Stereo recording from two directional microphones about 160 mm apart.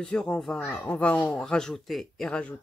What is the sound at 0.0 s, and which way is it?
Speech, 5° left (ahead or behind).